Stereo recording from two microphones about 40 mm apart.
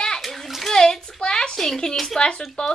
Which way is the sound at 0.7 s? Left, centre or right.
Centre.